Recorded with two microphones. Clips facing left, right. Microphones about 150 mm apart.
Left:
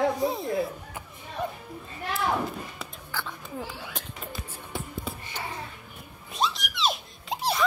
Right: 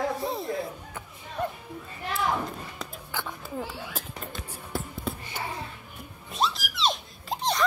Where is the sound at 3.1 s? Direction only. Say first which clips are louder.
Even; 15° right (ahead or behind).